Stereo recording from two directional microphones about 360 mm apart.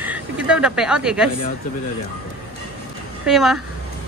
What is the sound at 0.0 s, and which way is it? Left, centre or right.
A woman's voice, centre.